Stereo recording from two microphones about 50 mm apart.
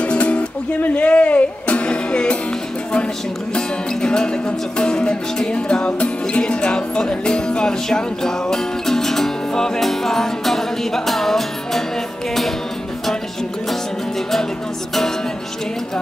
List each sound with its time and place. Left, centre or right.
0.0 s music: left
3.5 s music: centre